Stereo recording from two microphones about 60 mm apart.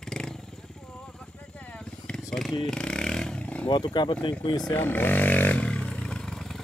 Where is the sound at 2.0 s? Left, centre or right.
Centre.